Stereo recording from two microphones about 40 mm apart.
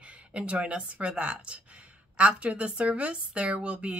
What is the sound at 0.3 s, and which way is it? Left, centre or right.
A woman's voice, right.